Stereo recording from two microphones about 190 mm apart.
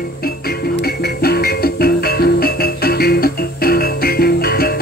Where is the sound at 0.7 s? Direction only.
55° left (ahead or behind).